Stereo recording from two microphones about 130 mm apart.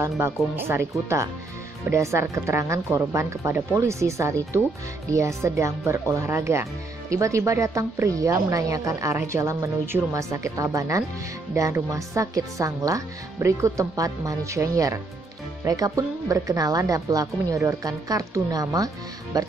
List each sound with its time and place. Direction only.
0.0 s speech: 20° right (ahead or behind)